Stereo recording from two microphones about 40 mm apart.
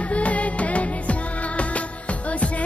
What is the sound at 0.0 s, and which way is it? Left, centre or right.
Music, left.